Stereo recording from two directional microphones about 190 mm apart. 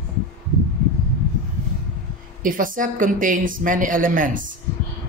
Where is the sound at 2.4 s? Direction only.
45° right (ahead or behind).